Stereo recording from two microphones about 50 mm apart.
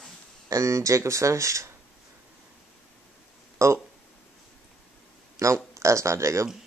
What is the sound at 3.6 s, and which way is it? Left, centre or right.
Speech, right.